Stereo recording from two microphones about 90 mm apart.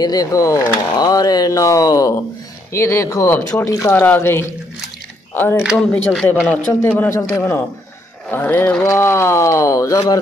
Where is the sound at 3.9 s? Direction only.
25° left (ahead or behind).